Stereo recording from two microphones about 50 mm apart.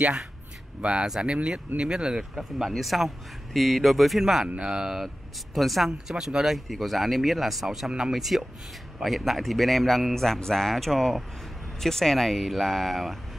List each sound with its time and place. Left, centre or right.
0.7 s speech: right
2.3 s a man's voice: centre
5.0 s a man's voice: centre